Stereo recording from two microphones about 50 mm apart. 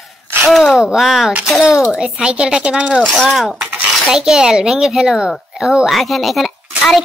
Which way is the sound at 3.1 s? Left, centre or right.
Centre.